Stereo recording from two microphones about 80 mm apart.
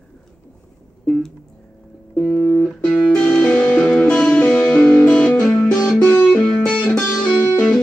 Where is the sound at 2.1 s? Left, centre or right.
Centre.